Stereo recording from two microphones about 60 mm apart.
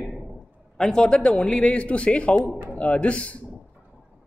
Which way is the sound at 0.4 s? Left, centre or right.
Centre.